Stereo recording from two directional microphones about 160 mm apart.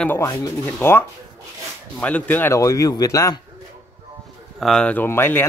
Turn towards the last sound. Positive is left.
turn(degrees=15)  # may be behind; listen again after turning